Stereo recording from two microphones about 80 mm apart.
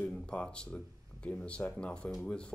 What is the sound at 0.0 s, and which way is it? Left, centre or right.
Speech, centre.